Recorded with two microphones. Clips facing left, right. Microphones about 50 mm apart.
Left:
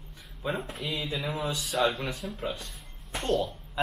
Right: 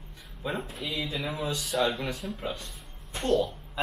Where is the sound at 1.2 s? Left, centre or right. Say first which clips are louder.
Even; centre.